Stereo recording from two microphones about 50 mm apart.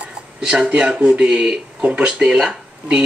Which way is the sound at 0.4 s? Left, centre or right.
Centre.